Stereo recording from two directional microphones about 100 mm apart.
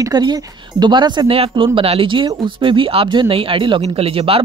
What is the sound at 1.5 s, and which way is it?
Speech, 65° right (ahead or behind).